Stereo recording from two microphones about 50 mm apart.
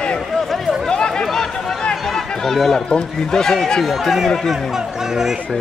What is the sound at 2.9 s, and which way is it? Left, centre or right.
Speech, centre.